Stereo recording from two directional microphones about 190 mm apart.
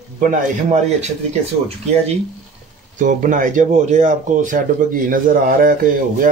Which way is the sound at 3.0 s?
40° right (ahead or behind).